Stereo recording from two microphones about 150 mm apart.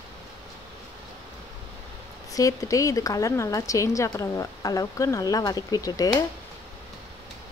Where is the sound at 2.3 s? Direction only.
20° left (ahead or behind).